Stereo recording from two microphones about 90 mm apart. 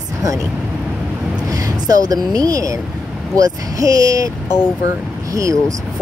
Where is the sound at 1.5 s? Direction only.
45° right (ahead or behind).